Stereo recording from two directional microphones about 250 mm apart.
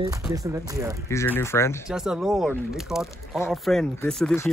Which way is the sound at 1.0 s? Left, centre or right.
Centre.